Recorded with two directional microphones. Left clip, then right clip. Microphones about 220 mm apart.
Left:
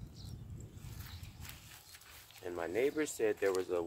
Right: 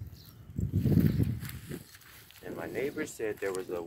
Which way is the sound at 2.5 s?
5° left (ahead or behind).